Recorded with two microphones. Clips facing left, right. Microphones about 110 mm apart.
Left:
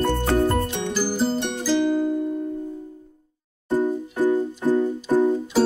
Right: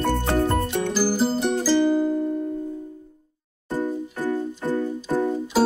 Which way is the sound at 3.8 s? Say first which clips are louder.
Left 4 dB; 15° left (ahead or behind).